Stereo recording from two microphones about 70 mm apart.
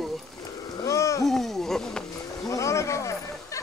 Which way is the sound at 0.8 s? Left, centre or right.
Left.